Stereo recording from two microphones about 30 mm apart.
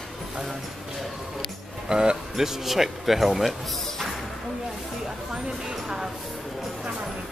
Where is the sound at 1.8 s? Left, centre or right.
Right.